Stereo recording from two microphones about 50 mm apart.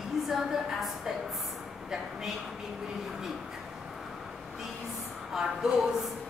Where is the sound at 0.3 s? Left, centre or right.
Centre.